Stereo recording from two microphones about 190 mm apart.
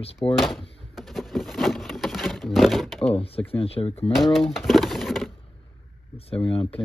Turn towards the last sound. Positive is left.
turn(degrees=30)  # may be behind; listen again after turning